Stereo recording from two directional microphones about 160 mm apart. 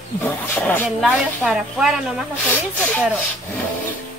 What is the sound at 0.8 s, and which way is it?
Speech, centre (ahead or behind).